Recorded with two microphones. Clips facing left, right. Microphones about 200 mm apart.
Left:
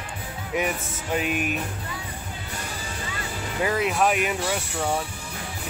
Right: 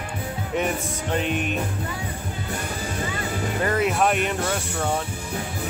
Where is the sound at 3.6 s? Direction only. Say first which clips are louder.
Right 1 dB; 5° left (ahead or behind).